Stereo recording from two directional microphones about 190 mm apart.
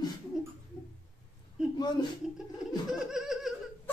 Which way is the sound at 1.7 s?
25° left (ahead or behind).